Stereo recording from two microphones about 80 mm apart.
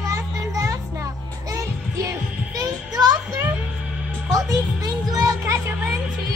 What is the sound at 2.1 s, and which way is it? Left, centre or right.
Music, right.